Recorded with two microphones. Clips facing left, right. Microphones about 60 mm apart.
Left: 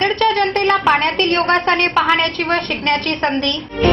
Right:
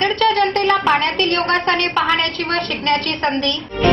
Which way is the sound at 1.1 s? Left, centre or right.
Left.